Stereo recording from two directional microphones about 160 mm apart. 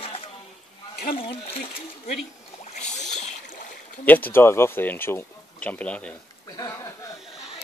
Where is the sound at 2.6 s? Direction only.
45° left (ahead or behind).